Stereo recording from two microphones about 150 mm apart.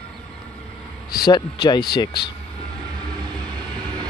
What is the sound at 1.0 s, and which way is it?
Speech, 30° left (ahead or behind).